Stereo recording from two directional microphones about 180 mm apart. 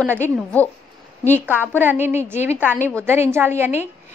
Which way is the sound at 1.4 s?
10° right (ahead or behind).